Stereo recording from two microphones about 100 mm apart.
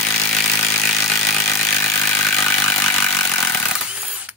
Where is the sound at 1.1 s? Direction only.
20° left (ahead or behind).